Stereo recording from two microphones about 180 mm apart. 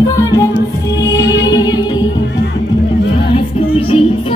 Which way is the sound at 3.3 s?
30° left (ahead or behind).